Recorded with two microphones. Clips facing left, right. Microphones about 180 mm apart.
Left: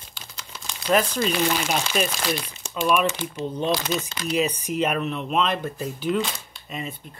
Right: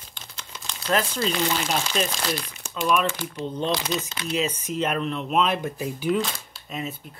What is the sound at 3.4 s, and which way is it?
Speech, 10° left (ahead or behind).